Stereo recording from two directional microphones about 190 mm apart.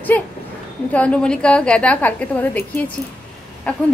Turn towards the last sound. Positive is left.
turn(degrees=10)  # may be behind; listen again after turning